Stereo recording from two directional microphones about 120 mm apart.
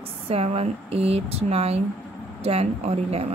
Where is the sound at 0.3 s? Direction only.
55° right (ahead or behind).